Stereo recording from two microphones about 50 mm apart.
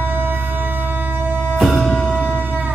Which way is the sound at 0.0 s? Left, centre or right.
Right.